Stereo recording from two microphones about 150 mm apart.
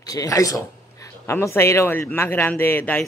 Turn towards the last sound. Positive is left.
turn(degrees=10)  # may be behind; listen again after turning